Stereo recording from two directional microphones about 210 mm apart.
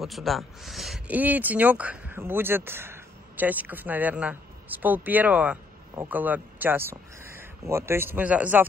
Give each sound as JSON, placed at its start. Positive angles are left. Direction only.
{"t": 0.0, "sound": "speech", "side_deg": 0}